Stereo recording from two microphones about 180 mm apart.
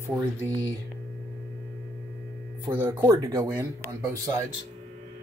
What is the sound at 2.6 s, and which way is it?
Music, 15° right (ahead or behind).